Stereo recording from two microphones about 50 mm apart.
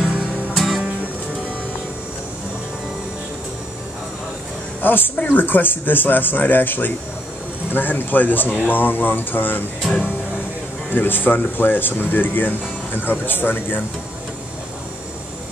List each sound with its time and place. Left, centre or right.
0.6 s music: centre
4.8 s speech: left
10.9 s speech: left